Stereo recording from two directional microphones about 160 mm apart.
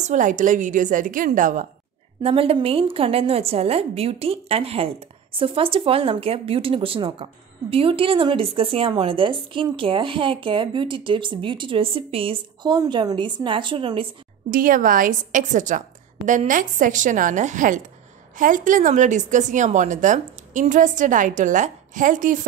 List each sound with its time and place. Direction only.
0.0 s a woman's voice: 50° right (ahead or behind)
2.2 s a woman's voice: 35° right (ahead or behind)
14.5 s a woman's voice: 60° right (ahead or behind)